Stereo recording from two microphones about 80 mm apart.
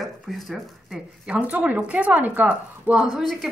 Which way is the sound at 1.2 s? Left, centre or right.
Centre.